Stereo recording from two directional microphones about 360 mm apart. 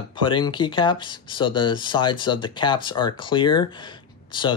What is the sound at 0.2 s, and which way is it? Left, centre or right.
Speech, centre.